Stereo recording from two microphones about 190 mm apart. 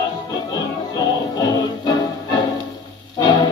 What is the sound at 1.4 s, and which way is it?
Music, 20° left (ahead or behind).